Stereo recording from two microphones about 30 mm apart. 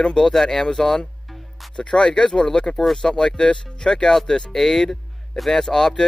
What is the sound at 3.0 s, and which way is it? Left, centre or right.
Speech, left.